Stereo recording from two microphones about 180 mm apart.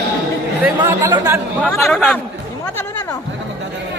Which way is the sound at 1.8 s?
5° left (ahead or behind).